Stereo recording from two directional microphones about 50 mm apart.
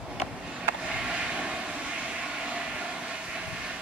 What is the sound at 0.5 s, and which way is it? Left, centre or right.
Vehicle, centre.